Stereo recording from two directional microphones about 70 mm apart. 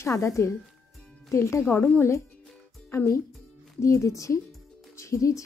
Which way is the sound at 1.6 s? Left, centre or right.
Left.